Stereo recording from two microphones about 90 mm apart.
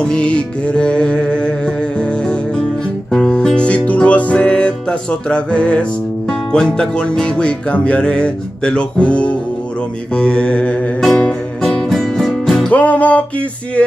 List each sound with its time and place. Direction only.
0.0 s music: 10° left (ahead or behind)
12.7 s music: 15° left (ahead or behind)